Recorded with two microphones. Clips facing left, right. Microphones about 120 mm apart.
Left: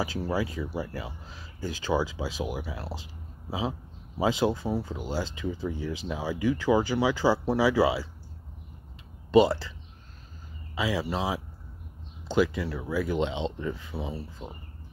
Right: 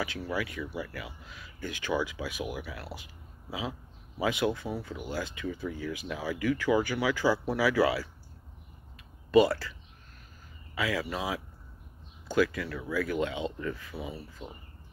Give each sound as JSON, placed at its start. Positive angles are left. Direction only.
{"t": 0.0, "sound": "speech", "side_deg": 35}
{"t": 9.3, "sound": "speech", "side_deg": 25}